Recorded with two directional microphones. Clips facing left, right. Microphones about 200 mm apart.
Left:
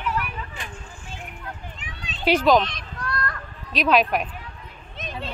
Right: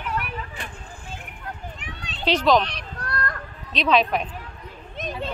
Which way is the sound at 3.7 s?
5° left (ahead or behind).